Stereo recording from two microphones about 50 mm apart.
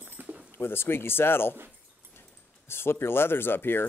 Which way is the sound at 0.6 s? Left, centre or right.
Left.